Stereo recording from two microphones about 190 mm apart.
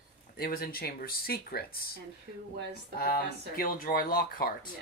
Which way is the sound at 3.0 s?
50° left (ahead or behind).